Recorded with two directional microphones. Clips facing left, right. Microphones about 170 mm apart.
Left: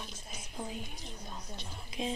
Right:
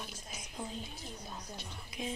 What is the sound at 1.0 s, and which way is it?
Speech, 5° right (ahead or behind).